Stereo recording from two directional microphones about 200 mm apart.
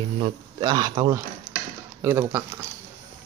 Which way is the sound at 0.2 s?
20° right (ahead or behind).